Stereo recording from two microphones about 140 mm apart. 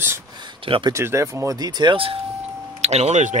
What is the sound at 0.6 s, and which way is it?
Speech, 40° right (ahead or behind).